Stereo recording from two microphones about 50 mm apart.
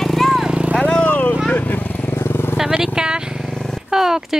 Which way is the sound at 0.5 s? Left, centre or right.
Right.